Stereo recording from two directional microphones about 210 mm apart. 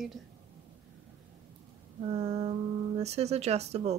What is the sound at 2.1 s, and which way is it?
Speech, 30° right (ahead or behind).